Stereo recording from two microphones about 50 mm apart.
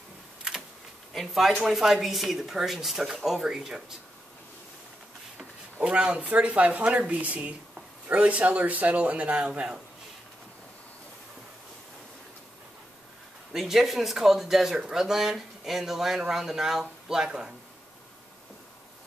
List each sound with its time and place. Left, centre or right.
0.4 s a sound: centre
1.1 s speech: centre
5.8 s speech: right
13.5 s speech: centre